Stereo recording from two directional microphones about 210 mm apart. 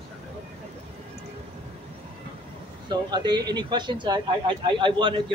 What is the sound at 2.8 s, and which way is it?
Speech, 20° right (ahead or behind).